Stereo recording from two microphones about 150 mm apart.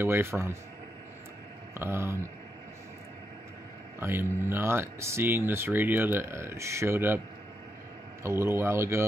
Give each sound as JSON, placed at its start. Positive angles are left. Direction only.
{"t": 0.0, "sound": "speech", "side_deg": -15}
{"t": 1.7, "sound": "speech", "side_deg": -15}
{"t": 4.0, "sound": "speech", "side_deg": -15}
{"t": 8.2, "sound": "speech", "side_deg": -15}